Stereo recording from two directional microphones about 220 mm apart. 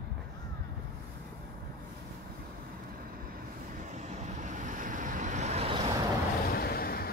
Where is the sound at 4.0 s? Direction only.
35° right (ahead or behind).